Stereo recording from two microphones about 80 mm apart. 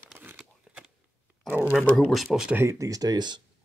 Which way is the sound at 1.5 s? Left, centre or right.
Right.